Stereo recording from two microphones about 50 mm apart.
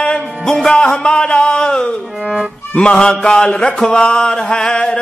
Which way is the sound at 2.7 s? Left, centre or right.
Centre.